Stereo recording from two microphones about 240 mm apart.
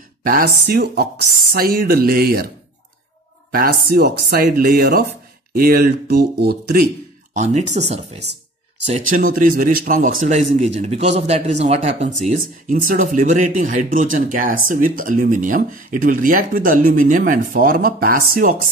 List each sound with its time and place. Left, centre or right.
0.2 s speech: right
3.5 s speech: right
7.3 s speech: right
8.2 s a sound: right
8.8 s speech: right